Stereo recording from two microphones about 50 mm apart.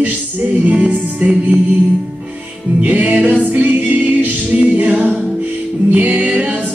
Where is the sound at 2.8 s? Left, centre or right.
Right.